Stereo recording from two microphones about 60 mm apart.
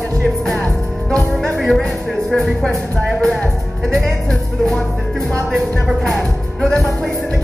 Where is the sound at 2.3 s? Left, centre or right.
Centre.